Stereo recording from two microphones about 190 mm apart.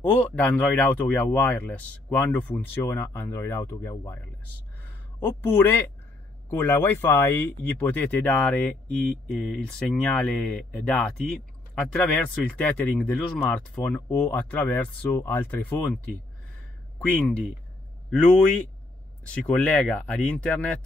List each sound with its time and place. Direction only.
0.1 s speech: 10° left (ahead or behind)
5.2 s speech: 10° left (ahead or behind)
18.1 s speech: 5° left (ahead or behind)